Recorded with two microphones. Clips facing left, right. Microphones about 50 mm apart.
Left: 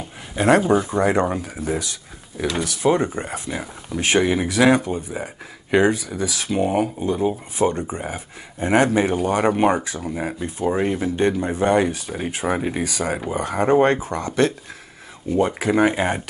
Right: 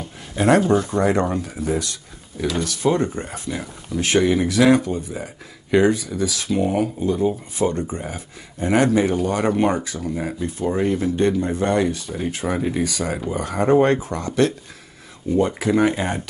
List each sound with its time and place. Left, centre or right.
0.0 s speech: centre
15.3 s speech: centre